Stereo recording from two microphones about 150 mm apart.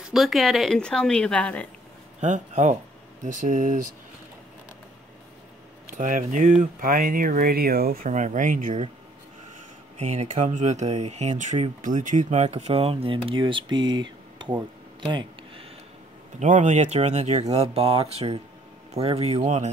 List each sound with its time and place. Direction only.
0.0 s a woman's voice: centre (ahead or behind)
2.1 s speech: 50° right (ahead or behind)
5.9 s speech: 60° right (ahead or behind)
9.9 s speech: 50° right (ahead or behind); by 14.5 s 30° right (ahead or behind)
15.0 s a sound: 30° right (ahead or behind)
16.3 s speech: 55° right (ahead or behind)